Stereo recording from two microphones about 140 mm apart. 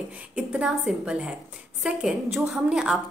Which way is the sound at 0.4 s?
5° right (ahead or behind).